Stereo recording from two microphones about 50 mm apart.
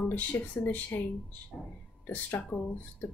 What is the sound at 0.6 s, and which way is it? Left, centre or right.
Speech, left.